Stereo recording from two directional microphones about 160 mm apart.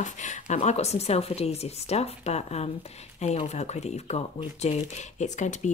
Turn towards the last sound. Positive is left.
turn(degrees=45)  # may be behind; listen again after turning